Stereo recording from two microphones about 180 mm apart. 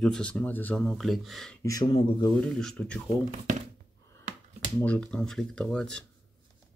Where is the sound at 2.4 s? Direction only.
5° left (ahead or behind).